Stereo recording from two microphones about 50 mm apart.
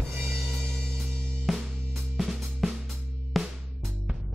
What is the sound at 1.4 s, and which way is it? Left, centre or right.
Music, centre.